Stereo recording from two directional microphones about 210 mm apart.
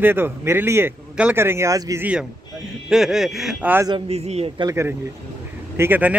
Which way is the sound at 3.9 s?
30° right (ahead or behind).